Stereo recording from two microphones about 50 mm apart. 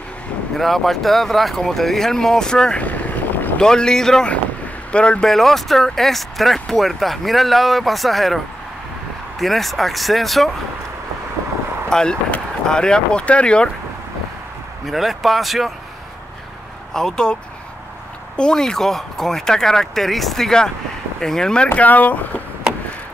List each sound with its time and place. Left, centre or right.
0.6 s speech: centre
2.8 s boat: left
3.5 s speech: centre
4.9 s speech: left
5.2 s speech: centre
9.4 s speech: centre
11.9 s speech: centre
14.9 s speech: centre
16.9 s speech: centre
21.7 s speech: left